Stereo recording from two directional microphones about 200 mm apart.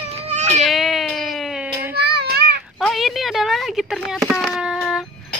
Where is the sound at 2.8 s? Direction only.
Centre (ahead or behind).